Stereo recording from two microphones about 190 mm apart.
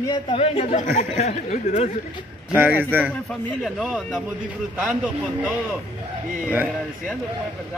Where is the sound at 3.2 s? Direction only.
Centre (ahead or behind).